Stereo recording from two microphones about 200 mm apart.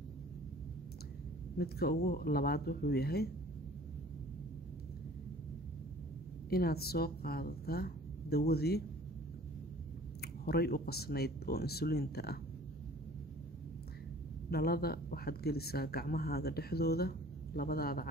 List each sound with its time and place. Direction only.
1.6 s speech: 50° left (ahead or behind)
6.5 s speech: 50° left (ahead or behind)
10.2 s speech: 50° left (ahead or behind)
14.5 s speech: 50° left (ahead or behind)